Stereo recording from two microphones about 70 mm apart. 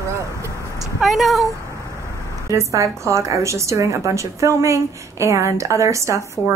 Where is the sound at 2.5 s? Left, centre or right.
Right.